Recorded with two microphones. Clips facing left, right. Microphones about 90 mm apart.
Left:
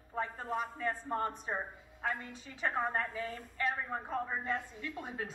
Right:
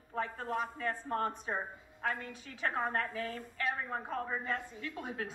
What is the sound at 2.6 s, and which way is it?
Speech, 15° left (ahead or behind).